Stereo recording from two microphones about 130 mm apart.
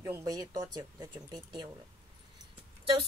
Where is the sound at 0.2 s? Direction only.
30° right (ahead or behind).